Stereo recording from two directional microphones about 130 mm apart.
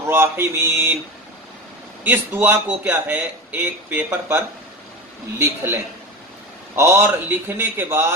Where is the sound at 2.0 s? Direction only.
15° right (ahead or behind).